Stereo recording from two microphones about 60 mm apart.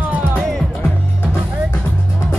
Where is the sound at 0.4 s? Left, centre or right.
Centre.